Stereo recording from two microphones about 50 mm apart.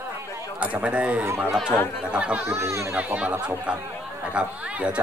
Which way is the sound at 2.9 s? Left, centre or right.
Right.